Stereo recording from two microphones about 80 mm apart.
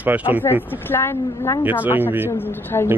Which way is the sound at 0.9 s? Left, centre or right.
Left.